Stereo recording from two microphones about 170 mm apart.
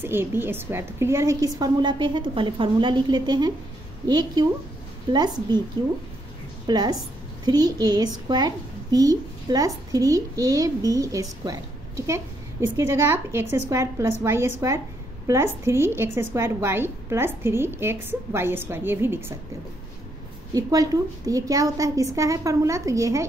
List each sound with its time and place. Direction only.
0.0 s a woman's voice: 15° right (ahead or behind)
6.7 s a woman's voice: 25° right (ahead or behind)
20.5 s a woman's voice: 20° right (ahead or behind)